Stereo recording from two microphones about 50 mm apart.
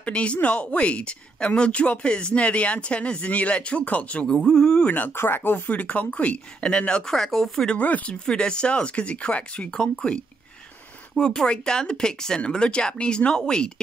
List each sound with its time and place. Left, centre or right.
0.0 s speech: left
4.3 s speech: centre
4.8 s speech: left
5.1 s speech: left
5.7 s speech: left; by 7.6 s centre
7.6 s speech: left
11.1 s speech: centre